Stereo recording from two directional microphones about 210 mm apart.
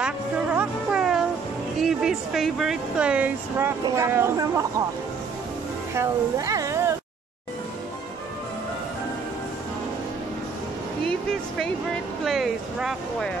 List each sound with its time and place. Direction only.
0.0 s music: 5° right (ahead or behind)
1.8 s speech: centre (ahead or behind)
5.9 s speech: 15° right (ahead or behind)
12.3 s speech: centre (ahead or behind)